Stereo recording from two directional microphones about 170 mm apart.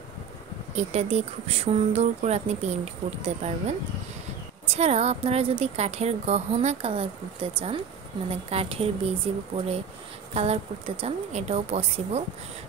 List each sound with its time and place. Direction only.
0.7 s a woman's voice: 40° right (ahead or behind)